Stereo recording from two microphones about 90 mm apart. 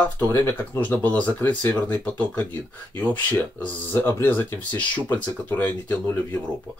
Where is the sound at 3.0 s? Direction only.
20° left (ahead or behind).